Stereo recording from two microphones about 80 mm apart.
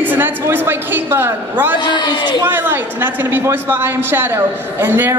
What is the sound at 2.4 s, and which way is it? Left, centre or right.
A woman's voice, right.